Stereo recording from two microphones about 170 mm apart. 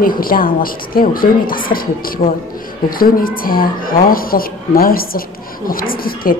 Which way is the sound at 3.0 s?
55° left (ahead or behind).